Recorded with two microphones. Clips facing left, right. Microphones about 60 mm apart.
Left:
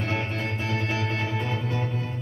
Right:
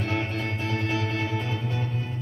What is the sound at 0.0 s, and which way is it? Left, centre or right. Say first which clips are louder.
Music: even; left.